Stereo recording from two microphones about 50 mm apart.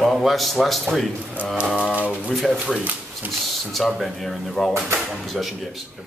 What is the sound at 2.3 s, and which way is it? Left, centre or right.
Speech, centre.